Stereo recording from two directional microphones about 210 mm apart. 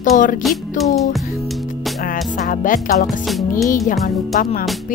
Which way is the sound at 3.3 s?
Centre (ahead or behind).